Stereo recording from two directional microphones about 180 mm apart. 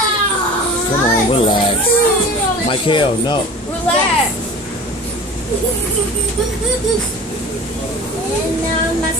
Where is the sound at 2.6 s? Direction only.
30° left (ahead or behind).